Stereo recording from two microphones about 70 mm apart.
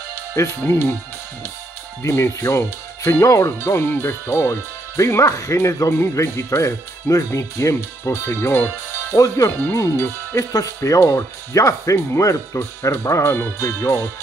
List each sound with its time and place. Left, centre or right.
0.4 s speech: left
2.0 s speech: left
9.1 s speech: left
9.7 s speech: left
10.5 s speech: left